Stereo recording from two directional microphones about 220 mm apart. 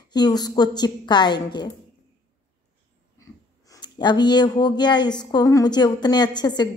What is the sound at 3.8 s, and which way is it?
A woman's voice, 20° left (ahead or behind).